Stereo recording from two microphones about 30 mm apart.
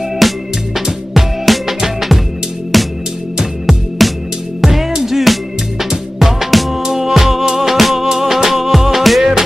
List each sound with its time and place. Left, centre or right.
0.2 s music: centre
4.0 s music: centre
5.2 s music: centre
6.8 s music: centre
7.1 s music: centre